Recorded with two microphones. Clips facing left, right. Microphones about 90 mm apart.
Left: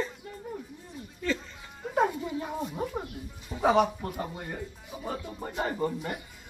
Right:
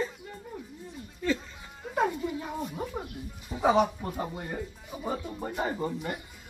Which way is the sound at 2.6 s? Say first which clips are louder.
Left 2 dB; centre (ahead or behind).